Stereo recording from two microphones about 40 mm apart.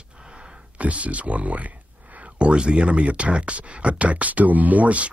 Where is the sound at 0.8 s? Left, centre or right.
Right.